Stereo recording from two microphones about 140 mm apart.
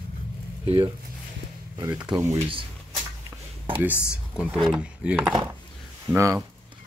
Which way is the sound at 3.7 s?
10° right (ahead or behind).